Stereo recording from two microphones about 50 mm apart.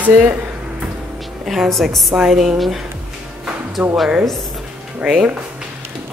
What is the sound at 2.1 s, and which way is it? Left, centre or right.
A woman's voice, centre.